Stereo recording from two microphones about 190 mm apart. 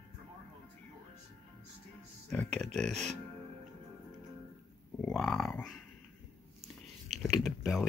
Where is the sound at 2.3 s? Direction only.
5° left (ahead or behind).